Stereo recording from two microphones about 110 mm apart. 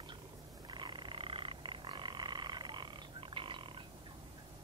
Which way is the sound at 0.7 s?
45° right (ahead or behind).